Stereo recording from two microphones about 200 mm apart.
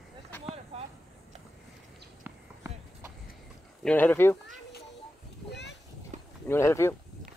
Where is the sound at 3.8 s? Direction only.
5° left (ahead or behind).